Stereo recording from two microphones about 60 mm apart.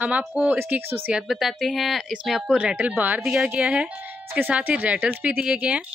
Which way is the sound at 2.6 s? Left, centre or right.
Right.